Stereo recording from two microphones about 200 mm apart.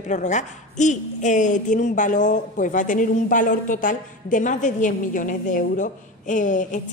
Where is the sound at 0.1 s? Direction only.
35° left (ahead or behind).